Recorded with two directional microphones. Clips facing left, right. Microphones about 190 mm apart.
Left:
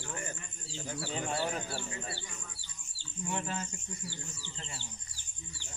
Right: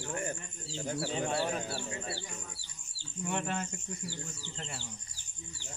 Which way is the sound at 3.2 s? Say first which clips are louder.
Right 2 dB; 60° right (ahead or behind).